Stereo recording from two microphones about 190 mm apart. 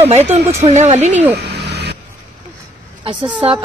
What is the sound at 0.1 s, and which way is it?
Speech, 35° right (ahead or behind).